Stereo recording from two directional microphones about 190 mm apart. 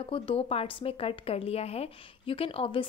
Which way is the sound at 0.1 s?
30° left (ahead or behind).